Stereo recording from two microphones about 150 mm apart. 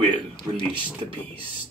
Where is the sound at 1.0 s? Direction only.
40° right (ahead or behind).